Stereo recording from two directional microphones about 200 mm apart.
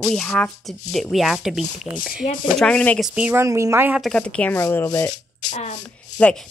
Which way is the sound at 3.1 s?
10° right (ahead or behind).